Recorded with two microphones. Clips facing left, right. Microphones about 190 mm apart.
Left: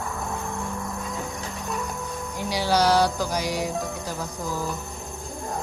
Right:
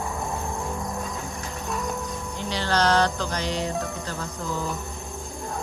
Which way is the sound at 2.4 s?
10° left (ahead or behind).